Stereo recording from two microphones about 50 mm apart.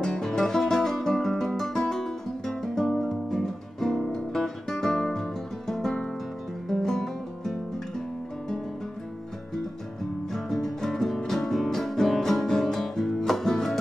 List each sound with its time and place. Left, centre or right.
0.0 s music: centre
10.3 s music: centre